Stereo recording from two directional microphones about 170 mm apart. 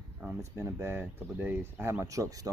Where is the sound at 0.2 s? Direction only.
15° right (ahead or behind).